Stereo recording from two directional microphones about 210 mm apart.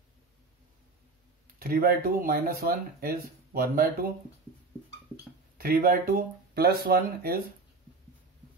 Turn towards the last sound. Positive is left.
turn(degrees=-45)  # may be behind; listen again after turning